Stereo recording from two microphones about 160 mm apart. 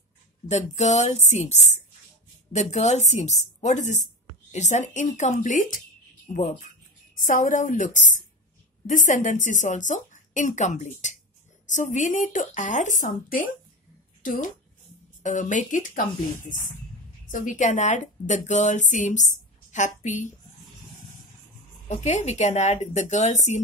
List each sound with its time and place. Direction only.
0.5 s speech: 45° left (ahead or behind)
7.2 s a woman's voice: 55° left (ahead or behind)
17.3 s speech: 55° left (ahead or behind)
21.8 s speech: 45° left (ahead or behind)